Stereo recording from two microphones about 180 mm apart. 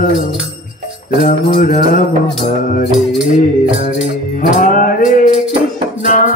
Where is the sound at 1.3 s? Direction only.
50° left (ahead or behind).